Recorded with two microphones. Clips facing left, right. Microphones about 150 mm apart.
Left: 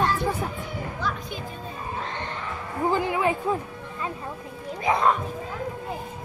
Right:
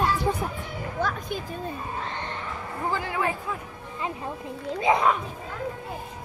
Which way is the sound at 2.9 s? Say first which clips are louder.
Left 4 dB; 20° left (ahead or behind).